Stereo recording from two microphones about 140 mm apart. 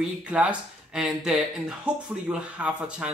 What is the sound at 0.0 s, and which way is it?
Speech, 10° right (ahead or behind).